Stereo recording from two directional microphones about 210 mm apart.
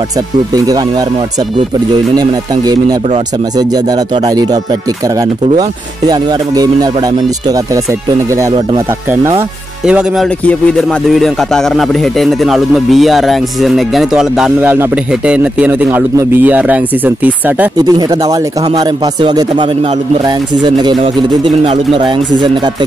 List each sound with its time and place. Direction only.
5.6 s speech: 15° right (ahead or behind)
9.8 s speech: 5° right (ahead or behind)
17.7 s speech: 20° right (ahead or behind)